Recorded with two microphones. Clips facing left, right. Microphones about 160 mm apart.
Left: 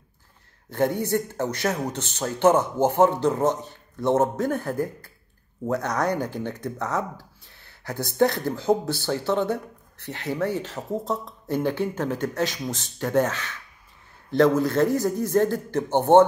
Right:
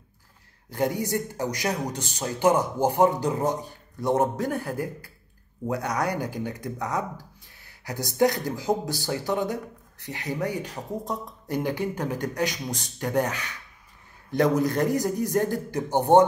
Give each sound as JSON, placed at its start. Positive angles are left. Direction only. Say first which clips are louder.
{"t": 0.7, "sound": "speech", "louder": "left 3 dB", "side_deg": -10}